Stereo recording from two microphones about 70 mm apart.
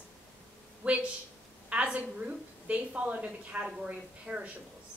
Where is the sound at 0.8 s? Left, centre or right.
Centre.